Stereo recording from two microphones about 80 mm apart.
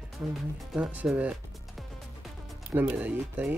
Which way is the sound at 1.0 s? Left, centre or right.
Centre.